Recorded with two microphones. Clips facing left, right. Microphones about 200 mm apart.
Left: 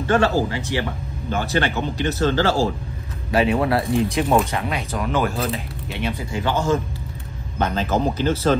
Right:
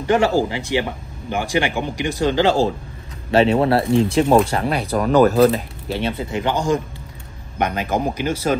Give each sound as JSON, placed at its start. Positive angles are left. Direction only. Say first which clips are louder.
{"t": 0.0, "sound": "speech", "louder": "right 2 dB", "side_deg": -15}
{"t": 3.3, "sound": "speech", "louder": "right 4 dB", "side_deg": -25}